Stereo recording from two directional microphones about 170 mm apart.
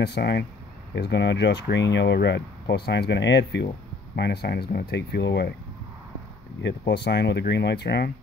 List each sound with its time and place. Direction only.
0.0 s speech: 90° left
4.2 s speech: 75° left (ahead or behind)
6.9 s speech: 80° left